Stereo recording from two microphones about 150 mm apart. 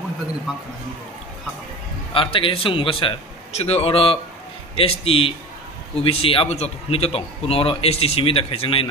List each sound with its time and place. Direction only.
2.1 s a man's voice: 35° left (ahead or behind)